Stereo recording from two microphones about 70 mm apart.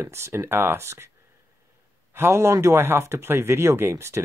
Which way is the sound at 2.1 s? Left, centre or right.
Right.